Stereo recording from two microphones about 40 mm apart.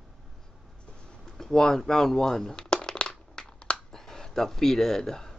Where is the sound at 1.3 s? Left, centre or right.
Centre.